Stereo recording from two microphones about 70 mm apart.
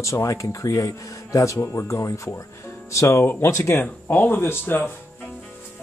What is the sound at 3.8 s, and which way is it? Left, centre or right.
Speech, left.